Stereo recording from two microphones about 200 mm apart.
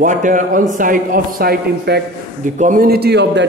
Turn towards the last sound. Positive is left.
turn(degrees=-55)  # may be behind; listen again after turning